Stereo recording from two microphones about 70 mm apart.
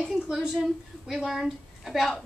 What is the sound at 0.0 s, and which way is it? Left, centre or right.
A woman's voice, centre.